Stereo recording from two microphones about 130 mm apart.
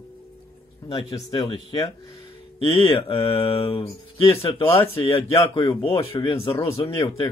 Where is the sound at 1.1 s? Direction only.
25° left (ahead or behind).